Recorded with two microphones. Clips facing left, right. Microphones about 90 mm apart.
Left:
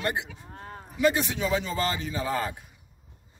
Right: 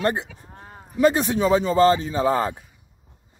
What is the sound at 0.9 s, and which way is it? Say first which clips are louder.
Speech: right 6 dB; 40° right (ahead or behind).